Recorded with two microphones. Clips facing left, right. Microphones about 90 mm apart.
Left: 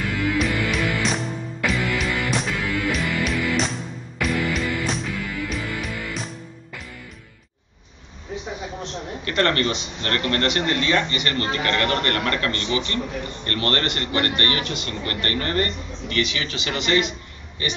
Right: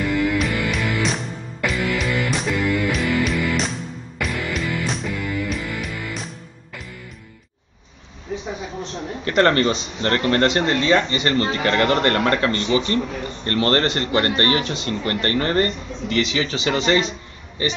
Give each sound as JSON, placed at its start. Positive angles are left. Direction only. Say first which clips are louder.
{"t": 0.1, "sound": "music", "louder": "even", "side_deg": 0}
{"t": 9.2, "sound": "speech", "louder": "right 5 dB", "side_deg": -25}